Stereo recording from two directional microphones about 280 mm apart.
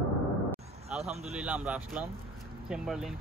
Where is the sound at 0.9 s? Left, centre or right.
Centre.